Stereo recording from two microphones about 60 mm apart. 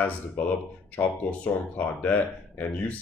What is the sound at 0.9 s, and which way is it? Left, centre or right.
Speech, left.